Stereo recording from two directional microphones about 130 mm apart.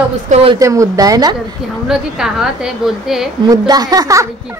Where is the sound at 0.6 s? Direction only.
25° right (ahead or behind).